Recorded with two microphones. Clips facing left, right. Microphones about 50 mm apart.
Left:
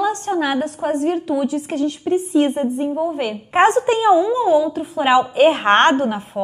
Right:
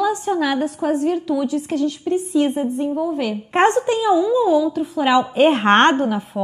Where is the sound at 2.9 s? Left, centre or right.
Centre.